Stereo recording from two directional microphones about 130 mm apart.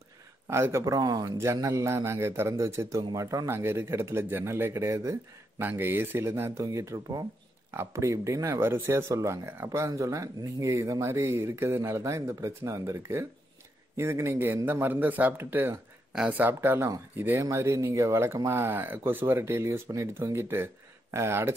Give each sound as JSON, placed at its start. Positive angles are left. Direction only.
{"t": 0.5, "sound": "a man's voice", "side_deg": -20}